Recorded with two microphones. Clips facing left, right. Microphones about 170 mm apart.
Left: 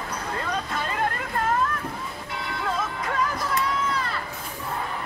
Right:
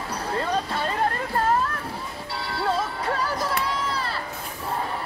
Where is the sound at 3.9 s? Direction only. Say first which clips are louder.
Left 1 dB; 30° right (ahead or behind).